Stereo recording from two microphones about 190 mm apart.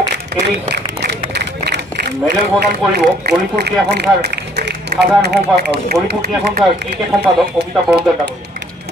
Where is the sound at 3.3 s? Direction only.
60° right (ahead or behind).